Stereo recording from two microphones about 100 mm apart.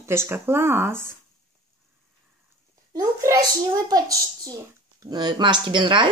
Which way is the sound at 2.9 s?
35° right (ahead or behind).